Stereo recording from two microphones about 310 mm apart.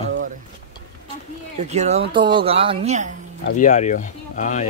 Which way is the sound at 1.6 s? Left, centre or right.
Right.